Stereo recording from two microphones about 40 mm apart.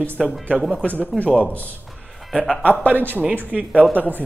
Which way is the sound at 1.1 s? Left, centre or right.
Left.